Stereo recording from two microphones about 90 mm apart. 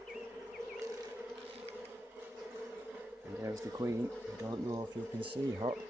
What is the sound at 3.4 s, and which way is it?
Speech, 35° right (ahead or behind).